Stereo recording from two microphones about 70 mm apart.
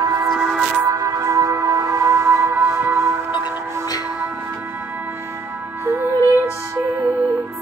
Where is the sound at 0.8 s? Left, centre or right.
Right.